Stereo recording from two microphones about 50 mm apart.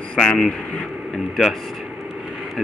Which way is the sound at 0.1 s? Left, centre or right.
Left.